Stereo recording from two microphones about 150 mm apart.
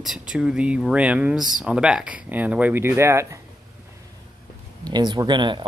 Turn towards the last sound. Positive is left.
turn(degrees=-30)  # may be behind; listen again after turning